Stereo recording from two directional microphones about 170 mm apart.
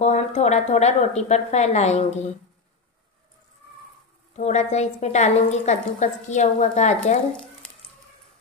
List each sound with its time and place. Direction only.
0.0 s a woman's voice: 40° left (ahead or behind)
4.4 s a woman's voice: 40° left (ahead or behind)